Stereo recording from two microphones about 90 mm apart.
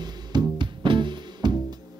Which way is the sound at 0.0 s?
55° right (ahead or behind).